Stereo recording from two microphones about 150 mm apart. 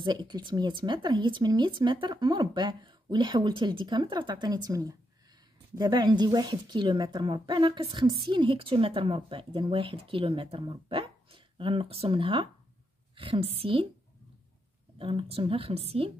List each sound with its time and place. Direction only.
0.0 s speech: 30° right (ahead or behind)
15.0 s speech: 40° right (ahead or behind)